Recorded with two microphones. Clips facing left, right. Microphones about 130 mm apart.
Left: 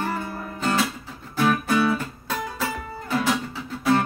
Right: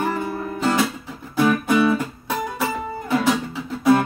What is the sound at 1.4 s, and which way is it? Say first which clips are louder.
Music: right 3 dB; 15° right (ahead or behind).